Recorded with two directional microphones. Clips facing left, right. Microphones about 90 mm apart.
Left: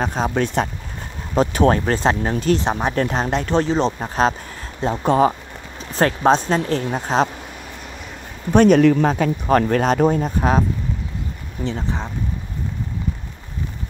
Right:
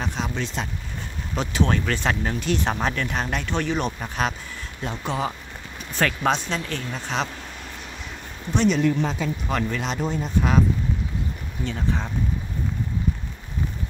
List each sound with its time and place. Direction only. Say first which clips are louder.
0.0 s speech: left 8 dB; 40° left (ahead or behind)
2.6 s speech: left 3 dB; 20° left (ahead or behind)
2.9 s speech: left 6 dB; 35° left (ahead or behind)
5.8 s speech: left 5 dB; 35° left (ahead or behind)
8.5 s speech: left 8 dB; 50° left (ahead or behind)
11.6 s speech: left 2 dB; 20° left (ahead or behind)